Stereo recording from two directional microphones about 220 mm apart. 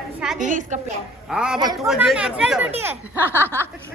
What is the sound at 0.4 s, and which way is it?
Speech, 35° right (ahead or behind).